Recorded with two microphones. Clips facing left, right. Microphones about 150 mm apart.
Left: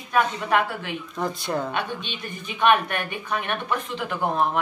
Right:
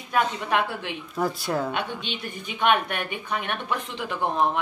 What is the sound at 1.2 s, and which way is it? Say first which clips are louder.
Speech: right 1 dB; 5° right (ahead or behind).